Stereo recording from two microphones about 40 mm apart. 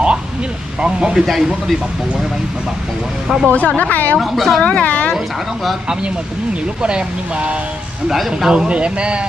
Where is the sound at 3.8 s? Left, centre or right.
Left.